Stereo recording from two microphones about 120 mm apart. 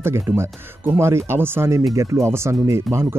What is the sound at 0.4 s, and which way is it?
Speech, 20° right (ahead or behind).